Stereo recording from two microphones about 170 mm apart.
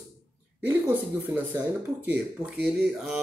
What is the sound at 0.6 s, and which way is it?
Speech, 10° right (ahead or behind).